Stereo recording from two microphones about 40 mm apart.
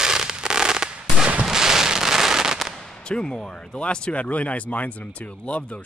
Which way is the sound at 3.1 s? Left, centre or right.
Left.